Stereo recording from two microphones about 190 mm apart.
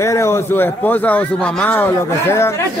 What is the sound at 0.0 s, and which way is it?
Speech, 15° left (ahead or behind).